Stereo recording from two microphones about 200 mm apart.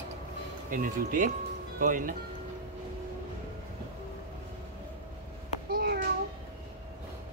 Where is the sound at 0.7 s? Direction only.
40° right (ahead or behind).